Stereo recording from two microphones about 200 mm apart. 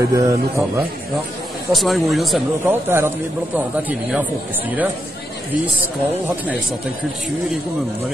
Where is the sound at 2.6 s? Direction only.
10° right (ahead or behind).